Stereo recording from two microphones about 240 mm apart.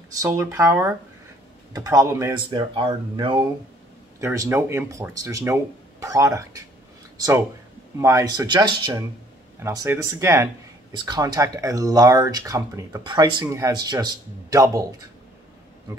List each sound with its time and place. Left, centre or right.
0.2 s speech: centre